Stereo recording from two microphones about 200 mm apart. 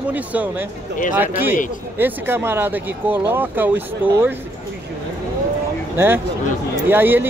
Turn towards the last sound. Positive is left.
turn(degrees=-10)  # may be behind; listen again after turning